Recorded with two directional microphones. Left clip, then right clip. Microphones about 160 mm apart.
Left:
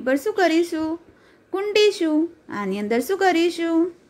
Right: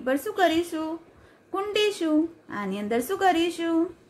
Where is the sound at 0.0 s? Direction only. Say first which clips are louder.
Left 4 dB; 40° left (ahead or behind).